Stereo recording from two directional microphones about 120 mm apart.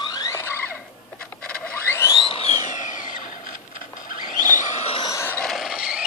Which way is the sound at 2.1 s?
45° left (ahead or behind).